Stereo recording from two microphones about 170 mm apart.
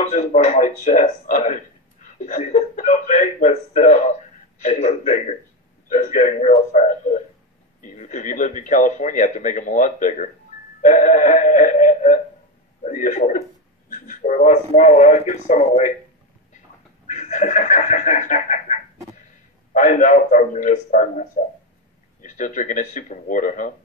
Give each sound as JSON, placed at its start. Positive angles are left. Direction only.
{"t": 0.0, "sound": "speech", "side_deg": 45}
{"t": 17.1, "sound": "speech", "side_deg": 45}